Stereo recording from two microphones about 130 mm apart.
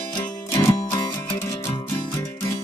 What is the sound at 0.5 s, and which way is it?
Music, 20° left (ahead or behind).